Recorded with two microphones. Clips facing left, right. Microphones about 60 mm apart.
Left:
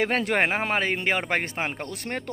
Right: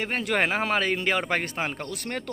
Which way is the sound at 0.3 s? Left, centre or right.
Left.